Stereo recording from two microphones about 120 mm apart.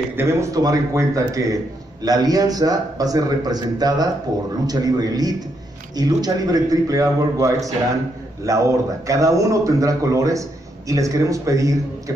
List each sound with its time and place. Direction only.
0.1 s a man's voice: 20° right (ahead or behind)